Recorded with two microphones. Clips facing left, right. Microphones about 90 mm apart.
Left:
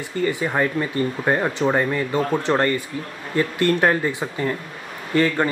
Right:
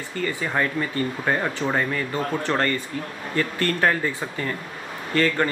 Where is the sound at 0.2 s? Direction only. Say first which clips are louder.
Left 4 dB; 15° left (ahead or behind).